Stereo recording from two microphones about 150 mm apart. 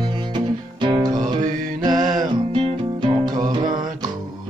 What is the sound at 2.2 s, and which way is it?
Music, 30° right (ahead or behind).